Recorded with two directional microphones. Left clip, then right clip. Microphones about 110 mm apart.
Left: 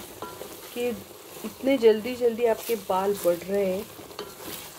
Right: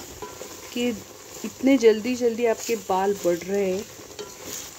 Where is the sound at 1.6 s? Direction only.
90° right; by 3.6 s 60° right (ahead or behind).